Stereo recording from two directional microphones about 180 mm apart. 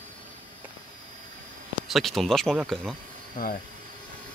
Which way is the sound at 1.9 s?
Centre (ahead or behind).